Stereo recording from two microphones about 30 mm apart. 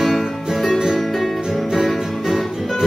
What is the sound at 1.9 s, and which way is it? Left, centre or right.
Music, centre.